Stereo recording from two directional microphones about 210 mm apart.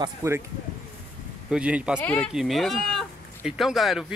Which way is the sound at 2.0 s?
5° left (ahead or behind).